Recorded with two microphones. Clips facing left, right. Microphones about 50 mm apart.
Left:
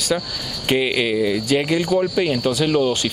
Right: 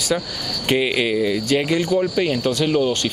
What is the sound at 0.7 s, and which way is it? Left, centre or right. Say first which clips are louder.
Speech: even; centre.